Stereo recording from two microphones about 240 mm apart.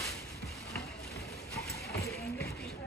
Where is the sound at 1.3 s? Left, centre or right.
Left.